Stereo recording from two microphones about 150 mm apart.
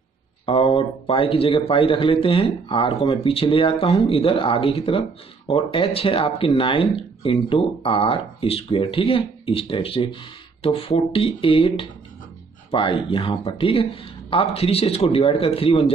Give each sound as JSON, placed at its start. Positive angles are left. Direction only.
{"t": 0.5, "sound": "a man's voice", "side_deg": 35}